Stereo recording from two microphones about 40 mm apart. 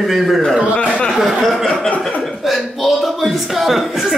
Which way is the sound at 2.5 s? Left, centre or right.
Centre.